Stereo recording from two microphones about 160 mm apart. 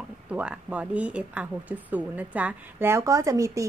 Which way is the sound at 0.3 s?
5° right (ahead or behind).